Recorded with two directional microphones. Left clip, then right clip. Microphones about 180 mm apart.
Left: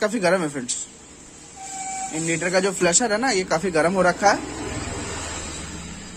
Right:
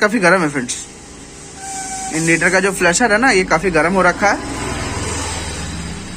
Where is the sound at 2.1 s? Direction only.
15° left (ahead or behind).